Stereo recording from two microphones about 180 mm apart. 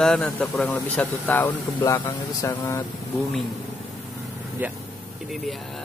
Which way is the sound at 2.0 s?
20° left (ahead or behind).